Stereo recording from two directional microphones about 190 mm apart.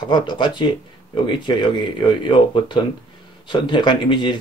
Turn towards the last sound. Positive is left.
turn(degrees=25)  # may be behind; listen again after turning